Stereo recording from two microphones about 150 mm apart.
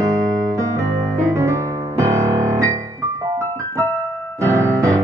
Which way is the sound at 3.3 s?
20° right (ahead or behind).